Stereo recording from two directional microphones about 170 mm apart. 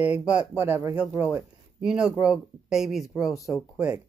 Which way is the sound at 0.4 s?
15° right (ahead or behind).